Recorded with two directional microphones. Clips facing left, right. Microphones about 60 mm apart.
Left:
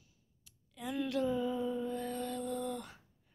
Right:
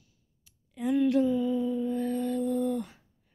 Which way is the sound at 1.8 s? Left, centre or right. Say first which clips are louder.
Right 8 dB; centre.